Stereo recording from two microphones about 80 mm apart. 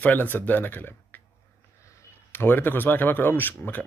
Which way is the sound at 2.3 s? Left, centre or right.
Left.